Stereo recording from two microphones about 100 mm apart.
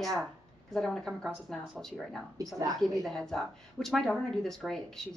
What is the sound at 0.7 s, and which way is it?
Speech, 5° left (ahead or behind).